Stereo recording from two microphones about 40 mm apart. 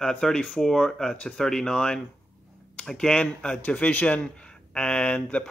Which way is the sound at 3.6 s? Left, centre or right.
Left.